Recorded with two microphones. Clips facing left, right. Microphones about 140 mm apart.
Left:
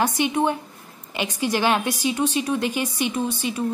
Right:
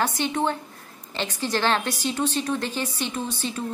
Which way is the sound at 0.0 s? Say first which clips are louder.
Left 3 dB; 15° left (ahead or behind).